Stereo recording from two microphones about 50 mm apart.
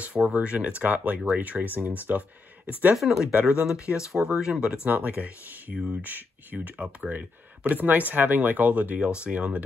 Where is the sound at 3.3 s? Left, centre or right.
Right.